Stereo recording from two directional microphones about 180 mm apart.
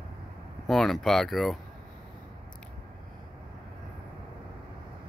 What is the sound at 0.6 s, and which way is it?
Speech, centre (ahead or behind).